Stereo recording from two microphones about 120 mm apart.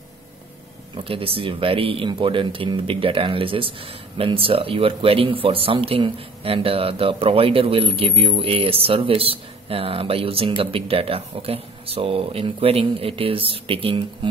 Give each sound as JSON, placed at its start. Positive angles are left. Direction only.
{"t": 0.9, "sound": "speech", "side_deg": -50}